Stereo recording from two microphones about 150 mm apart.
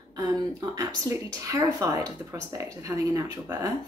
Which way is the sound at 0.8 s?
20° right (ahead or behind).